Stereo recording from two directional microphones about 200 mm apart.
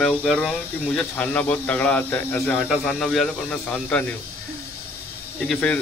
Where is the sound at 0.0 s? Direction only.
Centre (ahead or behind).